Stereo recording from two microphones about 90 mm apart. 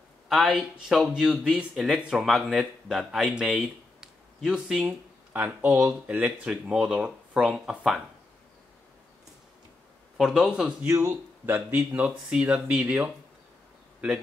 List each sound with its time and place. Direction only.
0.3 s speech: 10° right (ahead or behind)
4.8 s speech: 20° right (ahead or behind)
7.4 s speech: centre (ahead or behind)
10.1 s speech: 5° right (ahead or behind)
10.9 s speech: 30° right (ahead or behind)
11.7 s speech: 15° right (ahead or behind)